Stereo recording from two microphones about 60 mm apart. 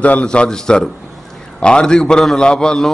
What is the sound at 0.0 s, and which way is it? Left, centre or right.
A man's voice, left.